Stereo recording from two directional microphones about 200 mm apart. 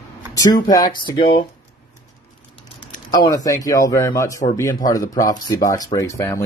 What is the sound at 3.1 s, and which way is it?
Speech, 15° left (ahead or behind).